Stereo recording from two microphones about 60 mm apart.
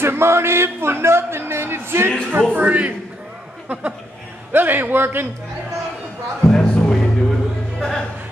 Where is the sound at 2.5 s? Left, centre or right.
Right.